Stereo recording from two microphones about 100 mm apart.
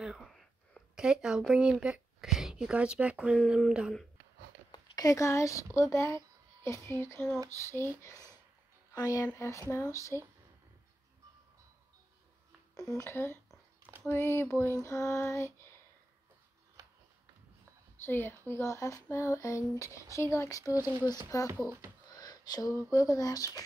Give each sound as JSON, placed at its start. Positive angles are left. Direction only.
{"t": 0.0, "sound": "a sound", "side_deg": 0}
{"t": 3.4, "sound": "speech", "side_deg": -5}
{"t": 4.6, "sound": "a woman's voice", "side_deg": 45}
{"t": 12.7, "sound": "speech", "side_deg": 35}
{"t": 18.0, "sound": "speech", "side_deg": 20}